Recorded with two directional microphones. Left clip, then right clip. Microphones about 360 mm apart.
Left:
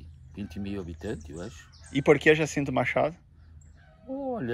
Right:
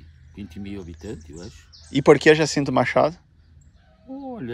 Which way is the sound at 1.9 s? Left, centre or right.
Centre.